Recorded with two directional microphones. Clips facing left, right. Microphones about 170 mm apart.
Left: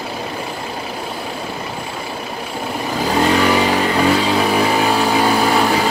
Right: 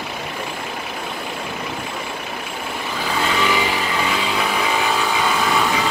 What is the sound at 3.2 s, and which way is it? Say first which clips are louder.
Vehicle: left 6 dB; 40° left (ahead or behind).